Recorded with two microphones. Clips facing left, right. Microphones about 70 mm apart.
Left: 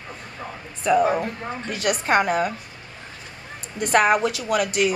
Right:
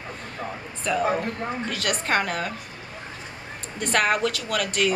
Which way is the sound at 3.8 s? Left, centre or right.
Centre.